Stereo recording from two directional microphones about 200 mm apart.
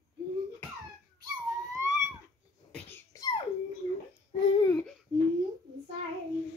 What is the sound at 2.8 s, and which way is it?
Cough, 15° left (ahead or behind).